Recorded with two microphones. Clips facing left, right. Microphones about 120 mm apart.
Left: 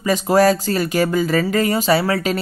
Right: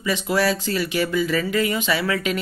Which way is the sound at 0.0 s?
40° left (ahead or behind).